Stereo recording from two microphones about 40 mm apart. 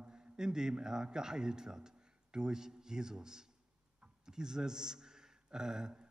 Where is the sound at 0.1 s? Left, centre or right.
Centre.